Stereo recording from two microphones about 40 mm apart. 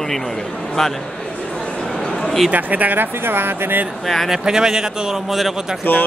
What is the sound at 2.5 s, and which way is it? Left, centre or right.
Speech, right.